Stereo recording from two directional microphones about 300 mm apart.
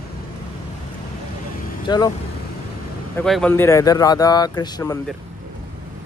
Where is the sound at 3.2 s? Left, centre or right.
Centre.